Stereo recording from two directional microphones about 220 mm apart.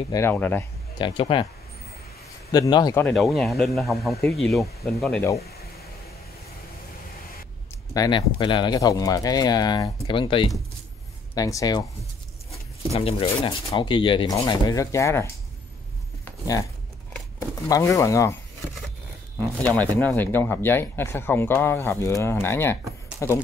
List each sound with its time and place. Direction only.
0.1 s speech: 10° left (ahead or behind)
0.9 s speech: 25° left (ahead or behind)
2.5 s a man's voice: 20° left (ahead or behind)
7.9 s speech: 20° left (ahead or behind)
12.9 s speech: 25° left (ahead or behind)
16.3 s a sound: 15° left (ahead or behind)
17.1 s speech: 15° left (ahead or behind)
19.3 s speech: 5° left (ahead or behind)